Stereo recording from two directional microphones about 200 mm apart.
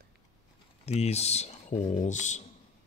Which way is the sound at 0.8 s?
30° left (ahead or behind).